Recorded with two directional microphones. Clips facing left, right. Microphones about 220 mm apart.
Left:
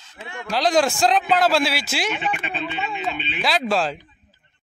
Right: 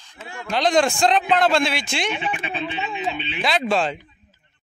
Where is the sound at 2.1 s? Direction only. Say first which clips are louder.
Even; 10° right (ahead or behind).